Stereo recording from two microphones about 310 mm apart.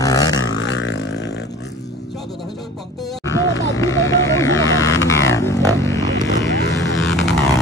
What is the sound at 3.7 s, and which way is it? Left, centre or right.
Vehicle, centre.